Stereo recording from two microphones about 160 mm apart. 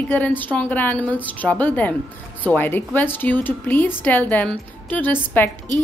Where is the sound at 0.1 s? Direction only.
10° left (ahead or behind).